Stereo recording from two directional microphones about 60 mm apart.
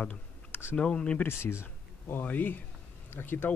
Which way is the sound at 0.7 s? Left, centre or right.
Centre.